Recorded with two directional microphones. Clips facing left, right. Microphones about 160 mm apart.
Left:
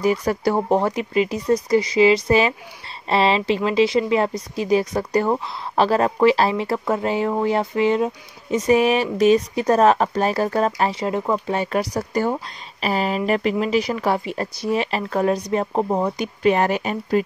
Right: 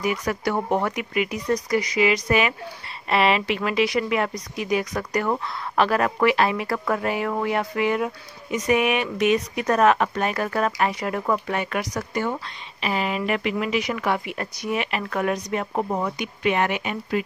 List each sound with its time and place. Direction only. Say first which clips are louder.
0.0 s speech: left 5 dB; 30° left (ahead or behind)